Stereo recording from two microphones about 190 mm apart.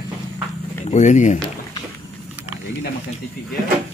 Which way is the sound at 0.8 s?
40° left (ahead or behind).